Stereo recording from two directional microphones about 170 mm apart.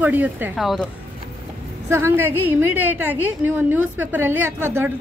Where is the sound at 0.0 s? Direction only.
10° right (ahead or behind).